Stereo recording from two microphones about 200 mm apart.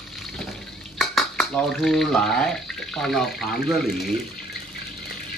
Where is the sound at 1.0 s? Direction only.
Centre (ahead or behind).